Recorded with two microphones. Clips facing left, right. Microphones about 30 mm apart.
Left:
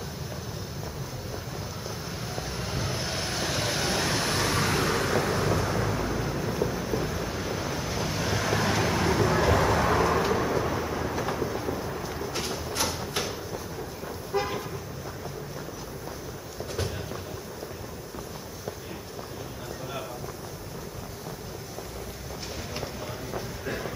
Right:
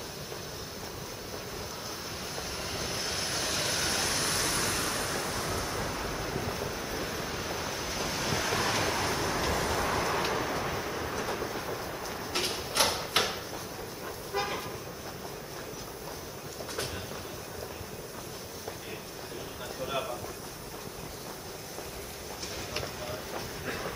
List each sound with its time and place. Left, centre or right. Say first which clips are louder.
2.3 s vehicle: left 4 dB; centre; by 5.9 s left
5.9 s vehicle: left 4 dB; centre
9.7 s vehicle: left 6 dB; left
10.1 s vehicle: left 5 dB; centre
11.1 s train: left 3 dB; centre
11.4 s vehicle: left 4 dB; centre
12.3 s mechanisms: right 3 dB; right
12.7 s a sound: right 4 dB; right
14.0 s vehicle: left 4 dB; centre
23.0 s train: left 2 dB; centre